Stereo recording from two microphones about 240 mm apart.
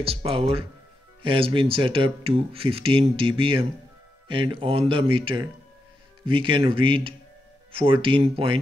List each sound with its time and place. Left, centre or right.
0.0 s speech: right